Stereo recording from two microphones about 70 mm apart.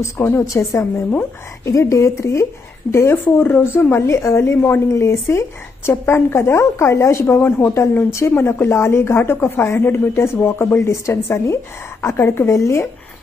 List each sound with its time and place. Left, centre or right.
0.0 s a woman's voice: left
3.3 s a woman's voice: left
7.3 s a woman's voice: left